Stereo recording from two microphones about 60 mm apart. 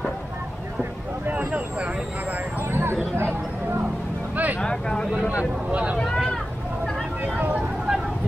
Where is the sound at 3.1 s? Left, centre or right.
Right.